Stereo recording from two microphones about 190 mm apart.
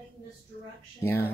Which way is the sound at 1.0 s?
10° left (ahead or behind).